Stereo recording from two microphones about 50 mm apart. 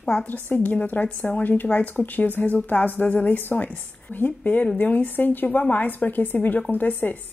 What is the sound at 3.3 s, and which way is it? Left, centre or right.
A woman's voice, left.